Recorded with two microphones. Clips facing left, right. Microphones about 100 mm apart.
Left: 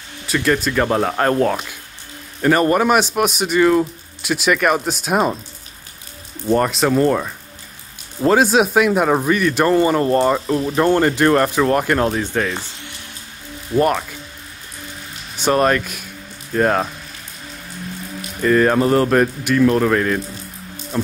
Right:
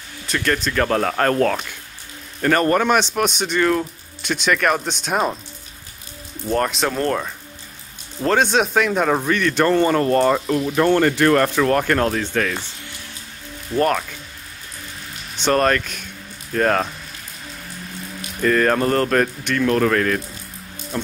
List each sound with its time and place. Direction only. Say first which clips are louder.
0.3 s speech: left 4 dB; 5° left (ahead or behind)
6.4 s speech: left 4 dB; 5° left (ahead or behind)
10.2 s speech: even; centre (ahead or behind)
10.8 s speech: left 1 dB; 20° left (ahead or behind)
13.7 s speech: left 2 dB; 10° left (ahead or behind)
15.3 s speech: left 2 dB; 10° left (ahead or behind)
18.4 s speech: left 3 dB; 5° left (ahead or behind)